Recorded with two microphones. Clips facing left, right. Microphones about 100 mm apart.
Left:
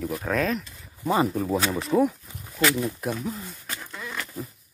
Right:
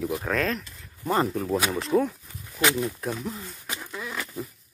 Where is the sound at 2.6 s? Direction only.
15° right (ahead or behind).